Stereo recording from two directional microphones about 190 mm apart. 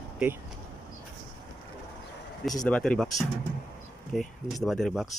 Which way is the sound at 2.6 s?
5° left (ahead or behind).